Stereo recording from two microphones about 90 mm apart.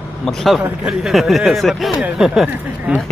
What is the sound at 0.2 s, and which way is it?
Speech, 5° left (ahead or behind).